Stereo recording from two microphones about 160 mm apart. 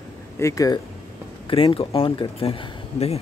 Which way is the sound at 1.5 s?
35° left (ahead or behind).